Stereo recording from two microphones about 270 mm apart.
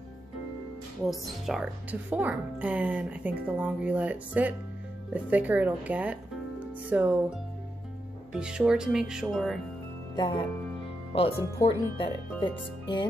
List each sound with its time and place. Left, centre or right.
1.0 s speech: centre
10.1 s speech: centre